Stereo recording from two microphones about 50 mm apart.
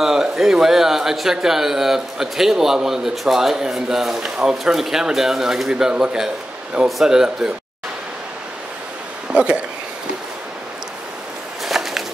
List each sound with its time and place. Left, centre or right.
0.0 s a man's voice: centre
9.3 s speech: right
11.6 s a sound: centre